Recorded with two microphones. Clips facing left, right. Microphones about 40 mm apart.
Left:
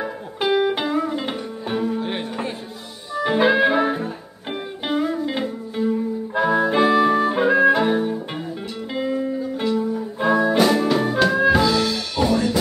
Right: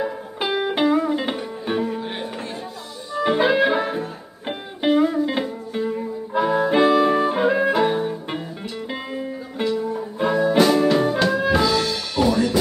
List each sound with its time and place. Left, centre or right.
0.0 s music: centre
2.0 s music: centre
3.3 s music: centre
4.5 s music: centre
6.3 s harmonica: centre
8.9 s music: centre